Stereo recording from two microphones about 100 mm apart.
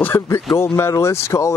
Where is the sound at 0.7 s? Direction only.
25° left (ahead or behind).